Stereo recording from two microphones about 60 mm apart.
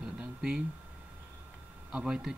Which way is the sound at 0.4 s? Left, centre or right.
Centre.